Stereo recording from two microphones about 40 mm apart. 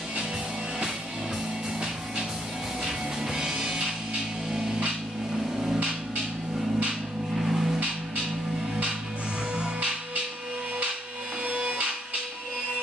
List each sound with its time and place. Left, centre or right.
2.8 s music: centre
7.3 s a sound: centre
9.6 s music: right
11.4 s music: right